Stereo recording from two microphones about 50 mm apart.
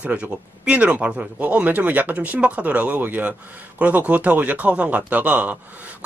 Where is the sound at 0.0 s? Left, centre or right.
Right.